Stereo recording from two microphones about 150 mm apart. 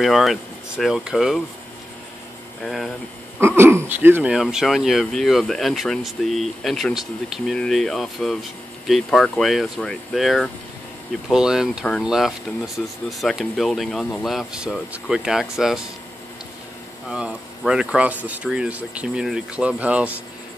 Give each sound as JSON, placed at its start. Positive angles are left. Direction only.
{"t": 0.0, "sound": "speech", "side_deg": 0}
{"t": 2.6, "sound": "speech", "side_deg": 0}
{"t": 3.3, "sound": "speech", "side_deg": -15}
{"t": 17.1, "sound": "speech", "side_deg": -5}